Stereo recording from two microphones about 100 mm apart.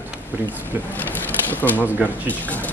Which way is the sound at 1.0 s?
20° left (ahead or behind).